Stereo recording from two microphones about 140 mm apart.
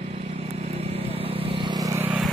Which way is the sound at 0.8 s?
45° right (ahead or behind).